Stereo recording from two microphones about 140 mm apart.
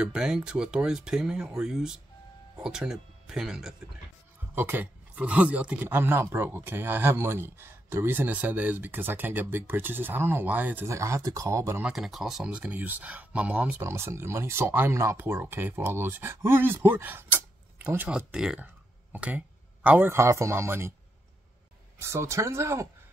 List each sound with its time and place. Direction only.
0.0 s speech: 5° right (ahead or behind)
4.6 s speech: 15° right (ahead or behind)
11.8 s a man's voice: 5° right (ahead or behind)
22.0 s speech: 20° right (ahead or behind)